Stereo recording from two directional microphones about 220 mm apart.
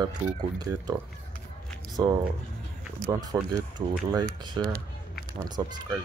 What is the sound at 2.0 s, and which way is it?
Speech, 20° right (ahead or behind).